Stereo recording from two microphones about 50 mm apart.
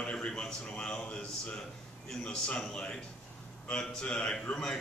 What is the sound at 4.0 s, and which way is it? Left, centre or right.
Speech, centre.